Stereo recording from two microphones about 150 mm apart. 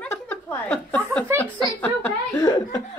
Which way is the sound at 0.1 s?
15° left (ahead or behind).